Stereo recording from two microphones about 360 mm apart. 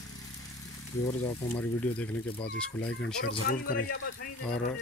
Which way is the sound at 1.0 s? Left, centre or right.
Centre.